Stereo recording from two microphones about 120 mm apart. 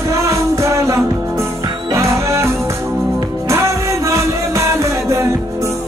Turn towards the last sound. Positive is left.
turn(degrees=-25)  # may be behind; listen again after turning